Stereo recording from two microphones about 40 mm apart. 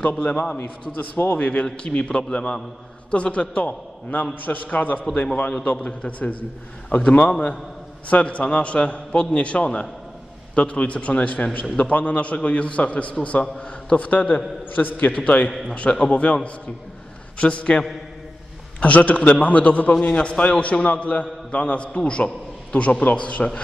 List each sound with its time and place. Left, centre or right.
0.2 s a man's voice: left
0.6 s a man's voice: left
1.3 s a man's voice: left
3.6 s a man's voice: left
13.9 s a man's voice: left
14.8 s a man's voice: left
15.7 s a man's voice: left
17.4 s a man's voice: left
18.8 s a man's voice: left